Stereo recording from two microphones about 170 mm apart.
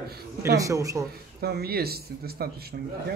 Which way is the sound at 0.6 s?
20° right (ahead or behind).